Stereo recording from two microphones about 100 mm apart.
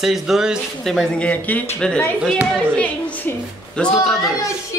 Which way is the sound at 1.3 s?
15° left (ahead or behind).